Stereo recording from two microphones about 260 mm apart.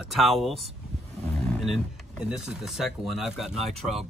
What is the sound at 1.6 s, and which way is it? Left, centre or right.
Speech, centre.